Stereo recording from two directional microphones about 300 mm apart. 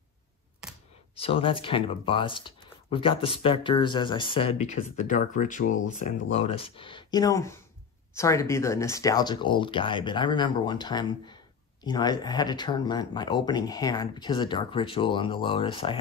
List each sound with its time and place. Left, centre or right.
0.6 s computer keyboard: centre
1.1 s speech: centre